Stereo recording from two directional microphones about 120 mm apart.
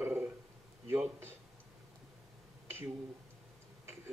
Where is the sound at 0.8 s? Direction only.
20° right (ahead or behind).